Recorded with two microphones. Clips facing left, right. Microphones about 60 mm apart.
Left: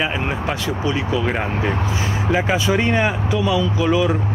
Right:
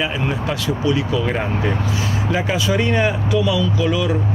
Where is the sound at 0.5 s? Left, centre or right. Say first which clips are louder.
Right 3 dB; left.